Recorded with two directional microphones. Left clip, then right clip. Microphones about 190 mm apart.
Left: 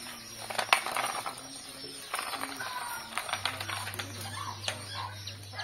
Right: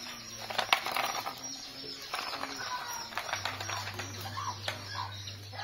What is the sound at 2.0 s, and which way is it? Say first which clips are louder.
Music: left 2 dB; 35° right (ahead or behind).